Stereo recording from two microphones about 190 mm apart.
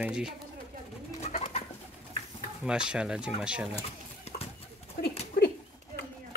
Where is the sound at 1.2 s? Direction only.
35° left (ahead or behind).